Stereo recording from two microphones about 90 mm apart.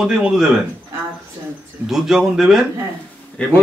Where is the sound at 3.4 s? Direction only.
15° left (ahead or behind).